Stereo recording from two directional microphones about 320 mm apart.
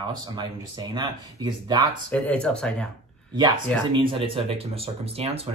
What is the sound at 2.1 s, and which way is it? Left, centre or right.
Speech, centre.